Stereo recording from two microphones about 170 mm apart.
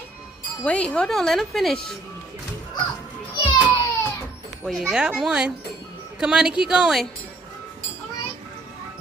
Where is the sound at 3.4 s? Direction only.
25° left (ahead or behind).